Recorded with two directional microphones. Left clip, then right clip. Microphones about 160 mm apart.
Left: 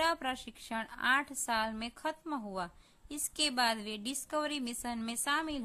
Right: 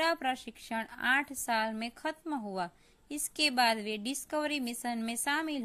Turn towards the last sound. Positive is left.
turn(degrees=-10)  # may be behind; listen again after turning